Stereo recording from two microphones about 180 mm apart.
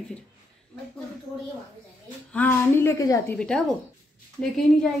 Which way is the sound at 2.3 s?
10° left (ahead or behind).